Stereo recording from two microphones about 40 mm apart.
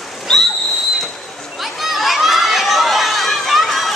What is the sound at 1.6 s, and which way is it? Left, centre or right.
Crowd, centre.